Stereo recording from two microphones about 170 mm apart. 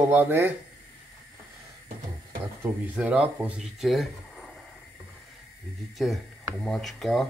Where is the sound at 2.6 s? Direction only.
10° right (ahead or behind).